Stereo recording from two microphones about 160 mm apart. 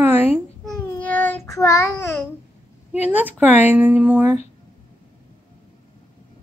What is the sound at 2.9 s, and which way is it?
Speech, 10° right (ahead or behind).